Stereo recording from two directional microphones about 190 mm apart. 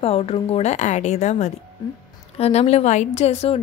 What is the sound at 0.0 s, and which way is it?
A woman's voice, 30° left (ahead or behind).